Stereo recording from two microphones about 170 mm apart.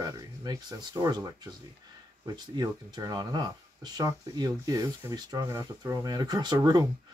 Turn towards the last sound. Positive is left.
turn(degrees=-20)  # may be behind; listen again after turning